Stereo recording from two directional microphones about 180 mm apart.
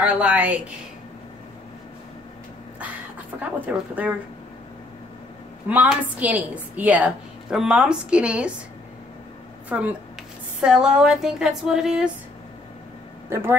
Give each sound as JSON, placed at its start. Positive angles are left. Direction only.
{"t": 0.0, "sound": "speech", "side_deg": -5}
{"t": 3.3, "sound": "speech", "side_deg": -10}
{"t": 5.7, "sound": "a woman's voice", "side_deg": -10}
{"t": 9.7, "sound": "a woman's voice", "side_deg": -10}
{"t": 13.3, "sound": "speech", "side_deg": -15}